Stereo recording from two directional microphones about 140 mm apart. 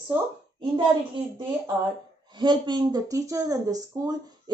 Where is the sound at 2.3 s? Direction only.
30° right (ahead or behind).